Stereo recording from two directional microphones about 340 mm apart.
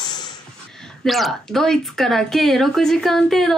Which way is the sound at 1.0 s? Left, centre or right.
Centre.